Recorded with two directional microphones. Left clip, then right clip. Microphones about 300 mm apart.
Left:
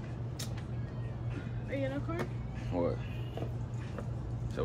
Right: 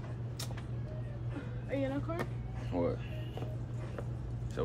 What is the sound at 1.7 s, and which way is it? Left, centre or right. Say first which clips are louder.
Speech: right 1 dB; centre.